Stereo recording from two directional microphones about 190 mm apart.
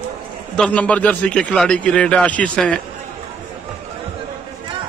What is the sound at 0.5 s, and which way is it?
A man's voice, 5° left (ahead or behind).